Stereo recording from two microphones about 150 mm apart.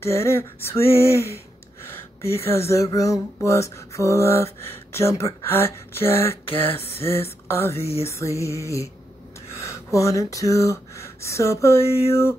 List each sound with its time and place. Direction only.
0.0 s speech: 15° left (ahead or behind)